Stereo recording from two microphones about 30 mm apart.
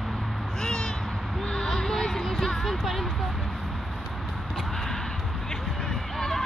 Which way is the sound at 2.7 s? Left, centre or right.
Centre.